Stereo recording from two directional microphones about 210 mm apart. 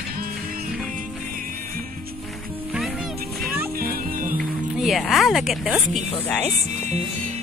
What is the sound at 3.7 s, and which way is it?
Music, 40° right (ahead or behind).